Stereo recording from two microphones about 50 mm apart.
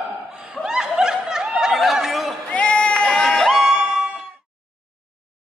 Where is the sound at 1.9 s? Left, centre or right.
Centre.